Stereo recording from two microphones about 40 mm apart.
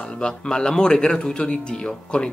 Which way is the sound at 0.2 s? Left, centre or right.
Centre.